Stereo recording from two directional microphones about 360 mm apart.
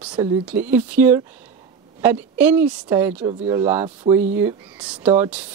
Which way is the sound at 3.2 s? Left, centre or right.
Centre.